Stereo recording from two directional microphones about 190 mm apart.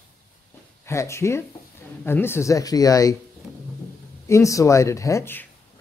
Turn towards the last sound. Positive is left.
turn(degrees=10)  # may be behind; listen again after turning